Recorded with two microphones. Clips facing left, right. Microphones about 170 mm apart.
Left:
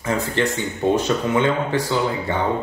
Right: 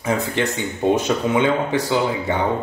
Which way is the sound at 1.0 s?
15° right (ahead or behind).